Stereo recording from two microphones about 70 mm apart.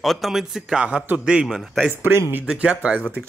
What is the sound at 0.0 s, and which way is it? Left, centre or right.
A man's voice, centre.